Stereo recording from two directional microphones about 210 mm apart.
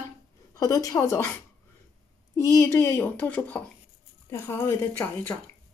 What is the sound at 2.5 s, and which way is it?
Speech, 15° left (ahead or behind).